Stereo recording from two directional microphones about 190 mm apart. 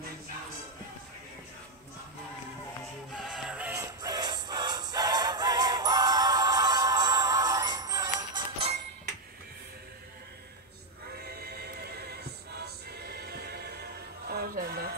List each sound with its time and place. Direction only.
3.1 s music: 5° right (ahead or behind)
4.0 s music: 20° right (ahead or behind)
11.1 s music: 55° right (ahead or behind)